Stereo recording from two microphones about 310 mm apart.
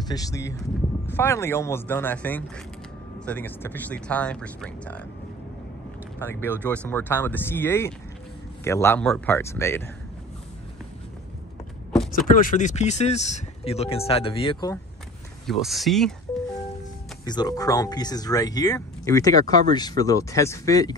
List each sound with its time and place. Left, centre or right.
0.1 s speech: centre
6.1 s speech: centre
12.1 s speech: left
15.4 s speech: centre
17.2 s speech: centre